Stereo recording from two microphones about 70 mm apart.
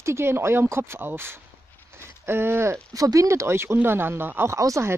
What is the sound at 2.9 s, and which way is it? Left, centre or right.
Speech, right.